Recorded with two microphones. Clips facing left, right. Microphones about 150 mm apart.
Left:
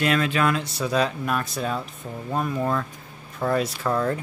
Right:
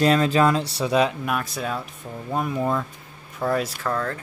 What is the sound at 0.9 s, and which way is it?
Speech, 15° right (ahead or behind).